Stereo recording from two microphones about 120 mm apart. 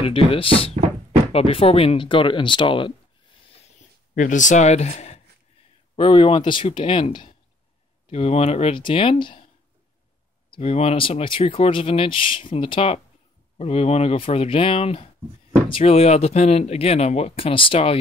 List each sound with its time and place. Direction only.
0.0 s speech: 50° left (ahead or behind)
4.2 s speech: 90° left; by 5.2 s 65° left (ahead or behind)
5.9 s speech: 45° left (ahead or behind)
8.1 s speech: 60° left (ahead or behind)
10.5 s speech: 55° left (ahead or behind)